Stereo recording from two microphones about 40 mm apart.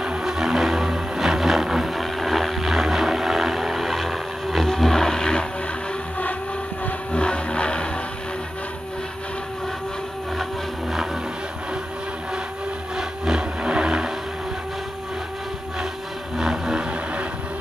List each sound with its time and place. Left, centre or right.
0.0 s vehicle: centre
7.1 s vehicle: left
12.9 s vehicle: centre
16.3 s vehicle: centre